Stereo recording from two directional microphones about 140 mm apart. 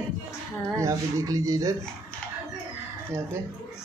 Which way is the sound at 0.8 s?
25° right (ahead or behind).